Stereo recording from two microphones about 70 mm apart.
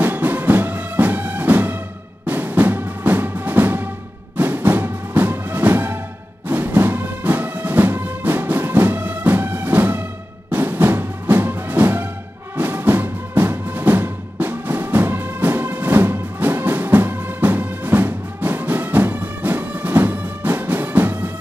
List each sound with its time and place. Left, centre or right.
0.0 s music: right